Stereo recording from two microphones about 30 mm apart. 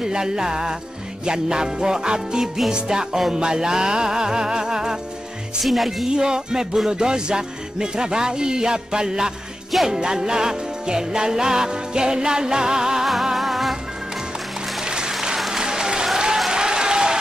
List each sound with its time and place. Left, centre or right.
0.0 s music: right
5.6 s speech: centre
6.0 s music: right
13.0 s music: centre
14.9 s applause: right